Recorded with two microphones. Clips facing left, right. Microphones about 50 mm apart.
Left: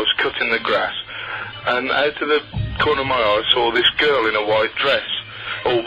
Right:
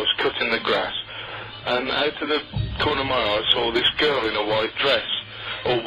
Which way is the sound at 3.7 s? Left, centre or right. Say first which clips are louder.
Left 4 dB; left.